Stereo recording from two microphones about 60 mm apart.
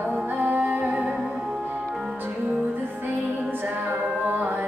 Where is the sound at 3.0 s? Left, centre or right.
Right.